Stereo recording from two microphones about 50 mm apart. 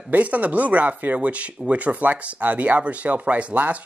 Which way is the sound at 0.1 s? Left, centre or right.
Right.